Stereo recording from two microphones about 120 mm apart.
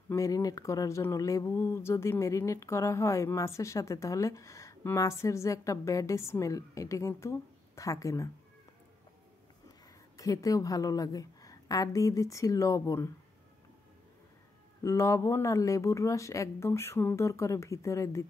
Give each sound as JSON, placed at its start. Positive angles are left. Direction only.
{"t": 0.1, "sound": "speech", "side_deg": 30}
{"t": 10.1, "sound": "speech", "side_deg": 30}
{"t": 14.8, "sound": "speech", "side_deg": 25}